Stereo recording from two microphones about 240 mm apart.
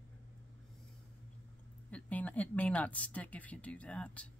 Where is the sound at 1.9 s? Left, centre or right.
Centre.